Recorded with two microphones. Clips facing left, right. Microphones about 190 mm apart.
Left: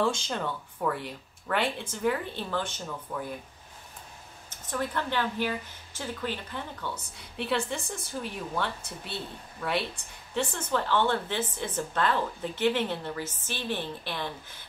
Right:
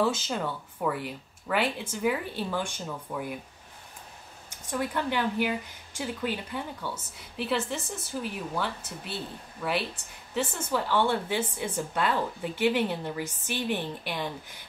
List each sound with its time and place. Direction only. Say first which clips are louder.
0.0 s speech: right 1 dB; 5° right (ahead or behind)
4.5 s speech: right 1 dB; 10° right (ahead or behind)